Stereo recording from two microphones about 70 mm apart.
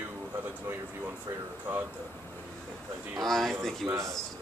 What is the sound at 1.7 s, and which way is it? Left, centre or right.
Speech, right.